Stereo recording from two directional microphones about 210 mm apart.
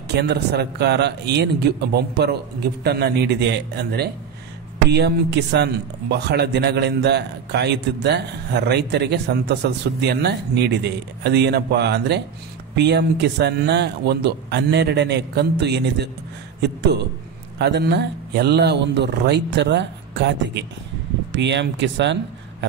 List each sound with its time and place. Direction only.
0.1 s speech: 55° right (ahead or behind)